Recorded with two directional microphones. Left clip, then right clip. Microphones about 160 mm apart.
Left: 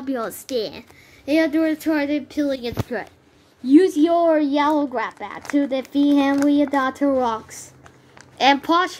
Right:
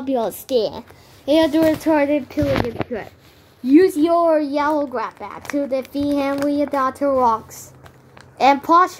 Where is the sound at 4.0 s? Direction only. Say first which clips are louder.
Right 1 dB; 20° left (ahead or behind).